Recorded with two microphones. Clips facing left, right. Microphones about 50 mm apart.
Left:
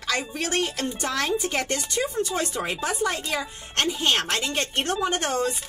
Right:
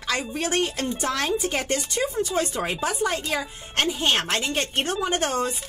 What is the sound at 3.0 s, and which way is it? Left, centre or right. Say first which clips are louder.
A woman's voice: right 1 dB; right.